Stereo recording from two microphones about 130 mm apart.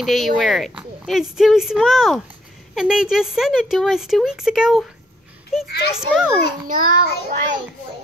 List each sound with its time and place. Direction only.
0.0 s a woman's voice: centre (ahead or behind)
6.7 s child singing: 90° right